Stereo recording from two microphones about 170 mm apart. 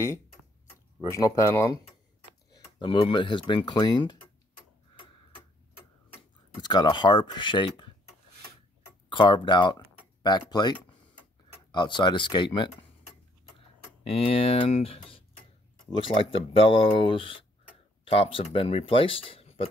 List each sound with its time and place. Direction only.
1.1 s speech: 20° left (ahead or behind)
2.8 s speech: 30° left (ahead or behind)
6.6 s speech: 25° left (ahead or behind)
9.1 s speech: 30° left (ahead or behind)
14.0 s speech: 35° left (ahead or behind)